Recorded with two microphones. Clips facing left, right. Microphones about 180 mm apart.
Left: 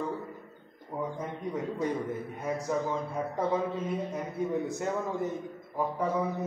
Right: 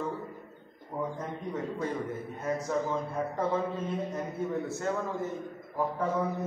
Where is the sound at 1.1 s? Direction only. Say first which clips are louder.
Left 1 dB; 10° left (ahead or behind).